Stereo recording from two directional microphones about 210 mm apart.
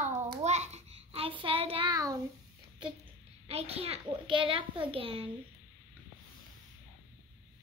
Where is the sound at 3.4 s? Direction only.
30° right (ahead or behind).